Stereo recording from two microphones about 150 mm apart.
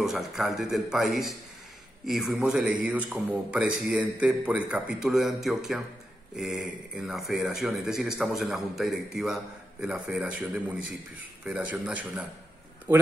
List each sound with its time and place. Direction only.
0.0 s a man's voice: 5° right (ahead or behind)